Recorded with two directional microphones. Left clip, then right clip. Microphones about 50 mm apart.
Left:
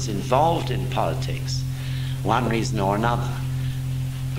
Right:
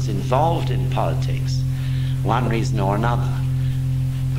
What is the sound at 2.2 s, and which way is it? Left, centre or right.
Speech, right.